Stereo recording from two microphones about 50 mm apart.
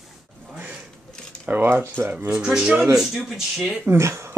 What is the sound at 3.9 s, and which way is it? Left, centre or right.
Speech, right.